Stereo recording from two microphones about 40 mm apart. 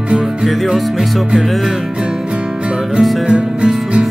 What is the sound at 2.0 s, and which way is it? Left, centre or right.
Music, centre.